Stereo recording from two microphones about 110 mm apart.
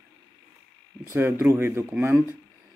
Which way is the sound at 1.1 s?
20° right (ahead or behind).